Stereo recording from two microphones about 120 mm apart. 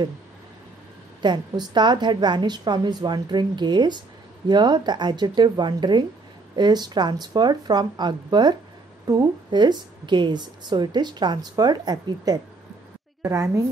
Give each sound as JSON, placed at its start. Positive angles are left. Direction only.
{"t": 1.2, "sound": "a woman's voice", "side_deg": -35}